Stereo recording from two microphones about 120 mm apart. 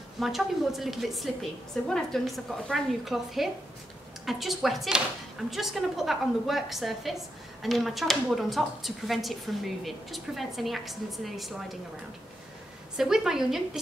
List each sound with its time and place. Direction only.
0.2 s a woman's voice: centre (ahead or behind)
12.9 s a woman's voice: 5° right (ahead or behind)